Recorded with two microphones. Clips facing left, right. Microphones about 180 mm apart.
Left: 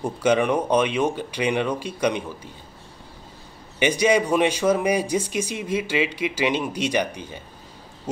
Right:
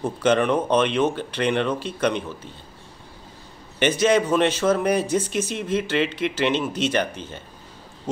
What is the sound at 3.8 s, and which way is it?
Speech, 10° left (ahead or behind).